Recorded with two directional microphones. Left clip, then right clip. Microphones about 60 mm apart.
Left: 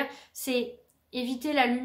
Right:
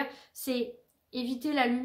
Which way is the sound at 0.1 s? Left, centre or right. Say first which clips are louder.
Left 4 dB; left.